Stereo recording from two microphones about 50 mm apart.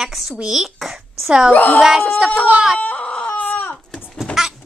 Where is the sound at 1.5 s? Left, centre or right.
Left.